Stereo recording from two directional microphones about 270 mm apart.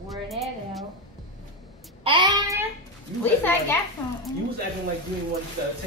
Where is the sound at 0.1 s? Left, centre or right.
Centre.